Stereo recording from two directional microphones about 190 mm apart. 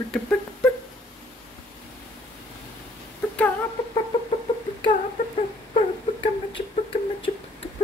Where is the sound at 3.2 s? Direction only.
5° left (ahead or behind).